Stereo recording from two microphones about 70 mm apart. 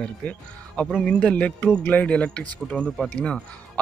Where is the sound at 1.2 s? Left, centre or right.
Centre.